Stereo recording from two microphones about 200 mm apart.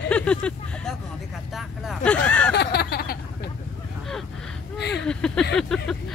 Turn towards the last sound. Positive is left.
turn(degrees=5)  # may be behind; listen again after turning